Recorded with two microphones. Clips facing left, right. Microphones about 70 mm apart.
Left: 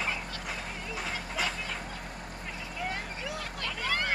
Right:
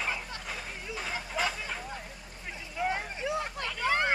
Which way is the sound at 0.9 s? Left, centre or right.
Centre.